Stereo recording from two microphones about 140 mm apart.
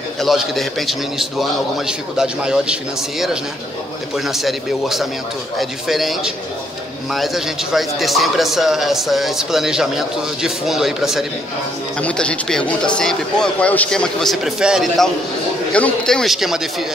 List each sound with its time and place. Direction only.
0.2 s a man's voice: centre (ahead or behind)
12.0 s a man's voice: 10° left (ahead or behind)